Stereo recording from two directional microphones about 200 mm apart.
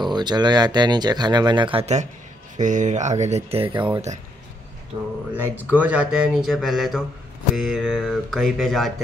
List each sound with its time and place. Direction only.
0.0 s speech: 20° right (ahead or behind)
3.7 s speech: 10° right (ahead or behind)
5.3 s speech: 10° right (ahead or behind)